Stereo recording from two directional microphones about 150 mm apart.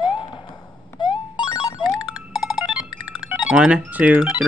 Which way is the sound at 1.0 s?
30° left (ahead or behind).